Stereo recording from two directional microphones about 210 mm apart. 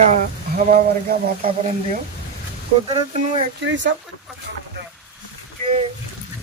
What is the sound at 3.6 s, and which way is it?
Speech, 60° right (ahead or behind).